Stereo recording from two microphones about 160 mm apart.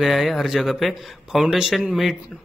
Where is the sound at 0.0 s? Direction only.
Centre (ahead or behind).